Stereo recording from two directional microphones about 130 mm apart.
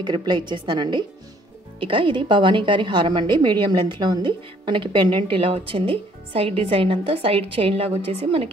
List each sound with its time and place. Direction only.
0.0 s a woman's voice: 35° right (ahead or behind)